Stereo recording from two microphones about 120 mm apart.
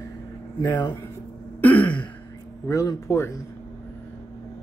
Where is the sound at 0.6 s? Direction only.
35° left (ahead or behind).